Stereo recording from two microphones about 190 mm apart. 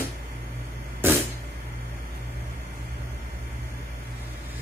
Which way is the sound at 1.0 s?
10° right (ahead or behind).